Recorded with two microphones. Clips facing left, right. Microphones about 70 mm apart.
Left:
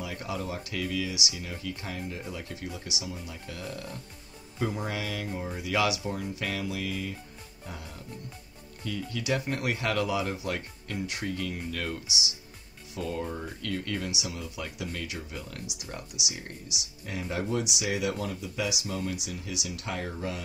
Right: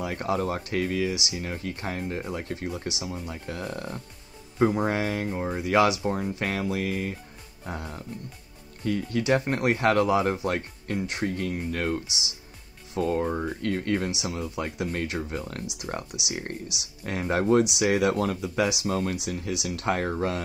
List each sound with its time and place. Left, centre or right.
0.0 s speech: right